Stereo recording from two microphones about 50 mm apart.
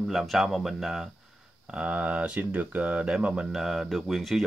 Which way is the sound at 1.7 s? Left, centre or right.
Right.